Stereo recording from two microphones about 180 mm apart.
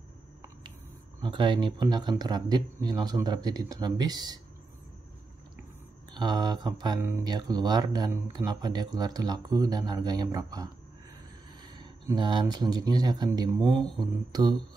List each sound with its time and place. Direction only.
1.2 s speech: 25° right (ahead or behind)
6.1 s speech: 25° right (ahead or behind)
13.6 s speech: 5° left (ahead or behind)
14.3 s speech: 20° right (ahead or behind)